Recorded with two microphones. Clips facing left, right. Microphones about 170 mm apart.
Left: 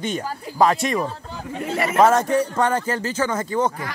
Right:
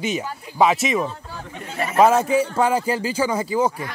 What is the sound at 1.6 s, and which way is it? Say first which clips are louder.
Speech: left 4 dB; 85° left.